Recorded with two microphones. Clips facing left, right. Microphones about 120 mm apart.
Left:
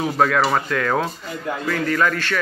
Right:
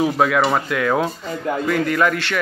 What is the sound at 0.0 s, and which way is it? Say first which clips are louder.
A man's voice: right 2 dB; 10° right (ahead or behind).